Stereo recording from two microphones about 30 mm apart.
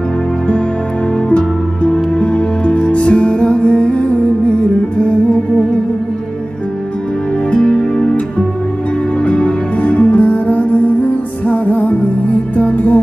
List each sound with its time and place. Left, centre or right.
1.3 s music: left
7.5 s music: left
9.2 s music: left
11.4 s music: left